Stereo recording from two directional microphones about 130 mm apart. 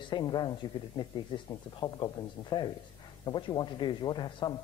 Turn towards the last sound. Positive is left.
turn(degrees=35)  # may be behind; listen again after turning